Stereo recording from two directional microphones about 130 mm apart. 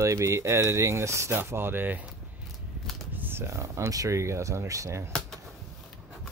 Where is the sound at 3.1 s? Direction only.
15° right (ahead or behind).